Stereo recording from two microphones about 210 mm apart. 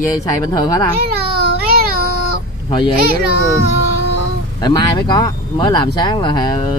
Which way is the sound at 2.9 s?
45° right (ahead or behind).